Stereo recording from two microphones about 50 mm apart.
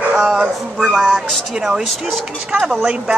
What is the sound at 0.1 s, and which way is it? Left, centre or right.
Speech, centre.